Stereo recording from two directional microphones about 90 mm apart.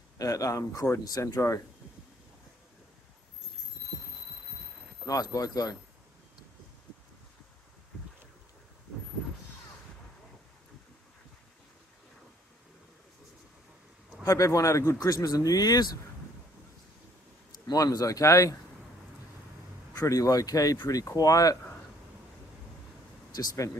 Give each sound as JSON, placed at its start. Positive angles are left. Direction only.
{"t": 0.2, "sound": "speech", "side_deg": 40}
{"t": 5.0, "sound": "speech", "side_deg": 40}
{"t": 14.2, "sound": "speech", "side_deg": 35}
{"t": 17.5, "sound": "speech", "side_deg": 45}
{"t": 19.9, "sound": "speech", "side_deg": 40}
{"t": 23.3, "sound": "speech", "side_deg": 35}